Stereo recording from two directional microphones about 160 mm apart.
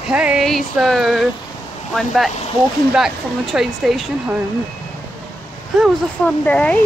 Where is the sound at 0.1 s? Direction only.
5° right (ahead or behind).